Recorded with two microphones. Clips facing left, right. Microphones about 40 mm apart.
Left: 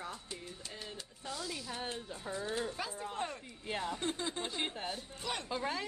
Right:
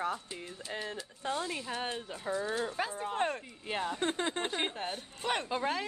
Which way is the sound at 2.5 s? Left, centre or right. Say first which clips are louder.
Right 4 dB; right.